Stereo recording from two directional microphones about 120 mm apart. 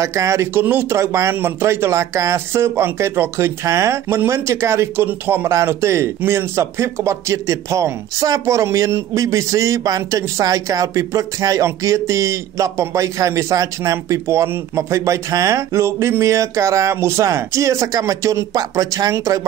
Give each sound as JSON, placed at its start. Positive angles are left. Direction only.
{"t": 0.0, "sound": "speech", "side_deg": -25}